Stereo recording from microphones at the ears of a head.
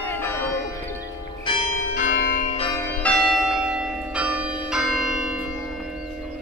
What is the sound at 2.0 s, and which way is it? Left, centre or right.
Change ringing, left.